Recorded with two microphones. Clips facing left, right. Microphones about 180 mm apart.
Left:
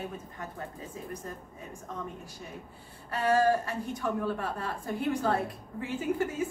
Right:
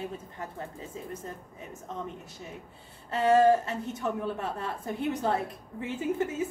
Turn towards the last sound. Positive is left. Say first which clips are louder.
# even
turn(degrees=-20)  # may be behind; listen again after turning